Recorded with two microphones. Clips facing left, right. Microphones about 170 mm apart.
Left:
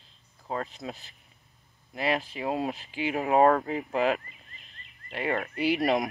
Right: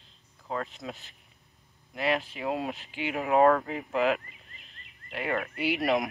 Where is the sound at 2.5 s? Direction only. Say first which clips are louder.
Left 1 dB; 35° left (ahead or behind).